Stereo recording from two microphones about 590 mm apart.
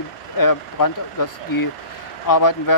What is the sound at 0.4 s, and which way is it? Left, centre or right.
Speech, left.